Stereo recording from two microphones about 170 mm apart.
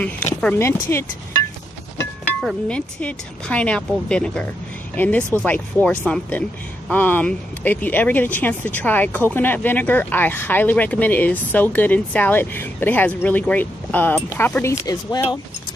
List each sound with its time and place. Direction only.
0.4 s speech: 10° left (ahead or behind)
2.4 s speech: 5° left (ahead or behind)